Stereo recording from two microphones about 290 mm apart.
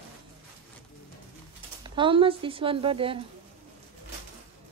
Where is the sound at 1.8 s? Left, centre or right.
Centre.